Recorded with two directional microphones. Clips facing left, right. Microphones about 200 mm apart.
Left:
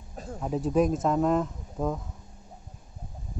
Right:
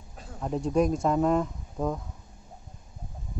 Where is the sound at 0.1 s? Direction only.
45° left (ahead or behind).